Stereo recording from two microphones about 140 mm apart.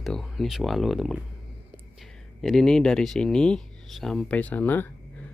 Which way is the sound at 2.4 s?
Centre (ahead or behind).